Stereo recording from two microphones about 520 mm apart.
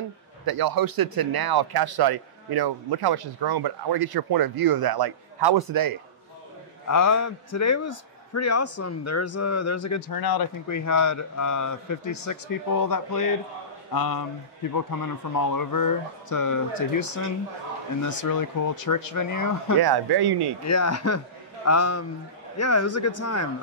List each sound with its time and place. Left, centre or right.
0.5 s speech: right
6.9 s a man's voice: left
19.8 s speech: right
20.6 s speech: left